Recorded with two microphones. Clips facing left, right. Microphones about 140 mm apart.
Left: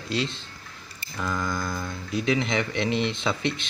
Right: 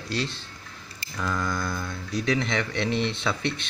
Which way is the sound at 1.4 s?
20° left (ahead or behind).